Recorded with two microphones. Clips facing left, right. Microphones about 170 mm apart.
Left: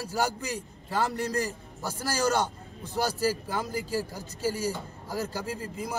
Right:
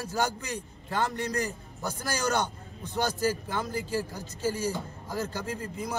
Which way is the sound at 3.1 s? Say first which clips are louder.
Left 1 dB; 35° left (ahead or behind).